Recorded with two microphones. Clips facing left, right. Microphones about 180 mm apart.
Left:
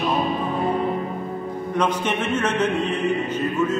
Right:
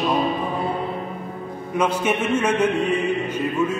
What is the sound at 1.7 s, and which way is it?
Mantra, 10° right (ahead or behind).